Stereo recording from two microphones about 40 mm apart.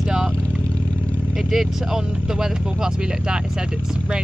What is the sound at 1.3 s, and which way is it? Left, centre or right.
Speech, centre.